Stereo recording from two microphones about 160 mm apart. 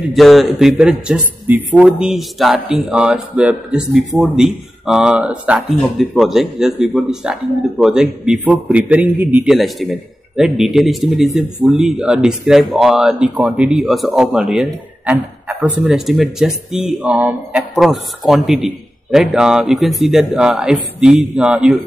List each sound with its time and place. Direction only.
0.1 s speech: centre (ahead or behind)